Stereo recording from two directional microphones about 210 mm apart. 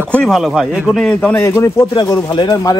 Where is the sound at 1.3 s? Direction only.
15° left (ahead or behind).